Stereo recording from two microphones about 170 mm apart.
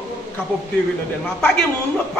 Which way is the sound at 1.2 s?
5° left (ahead or behind).